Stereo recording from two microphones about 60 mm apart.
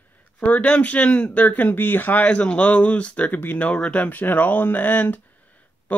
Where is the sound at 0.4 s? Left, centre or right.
Left.